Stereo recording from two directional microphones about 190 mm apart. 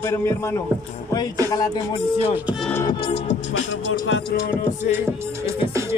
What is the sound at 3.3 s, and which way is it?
Music, 75° left (ahead or behind).